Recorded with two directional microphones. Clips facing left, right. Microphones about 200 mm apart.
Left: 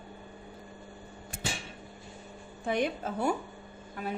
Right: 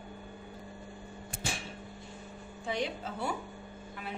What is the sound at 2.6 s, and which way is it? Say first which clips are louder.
Speech: left 5 dB; 55° left (ahead or behind).